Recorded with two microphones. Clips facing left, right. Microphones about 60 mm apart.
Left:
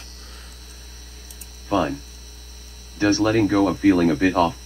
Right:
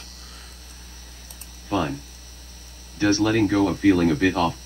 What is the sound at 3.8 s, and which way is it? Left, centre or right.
Speech, left.